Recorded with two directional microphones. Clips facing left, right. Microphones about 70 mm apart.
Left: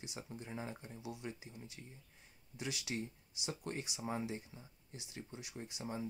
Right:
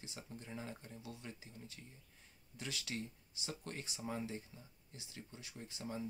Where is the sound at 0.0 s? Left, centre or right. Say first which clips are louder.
Left 3 dB; centre.